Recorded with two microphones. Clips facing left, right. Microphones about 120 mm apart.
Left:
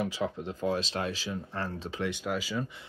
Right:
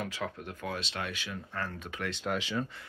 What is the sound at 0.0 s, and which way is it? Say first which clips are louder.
Speech: left 5 dB; 20° left (ahead or behind).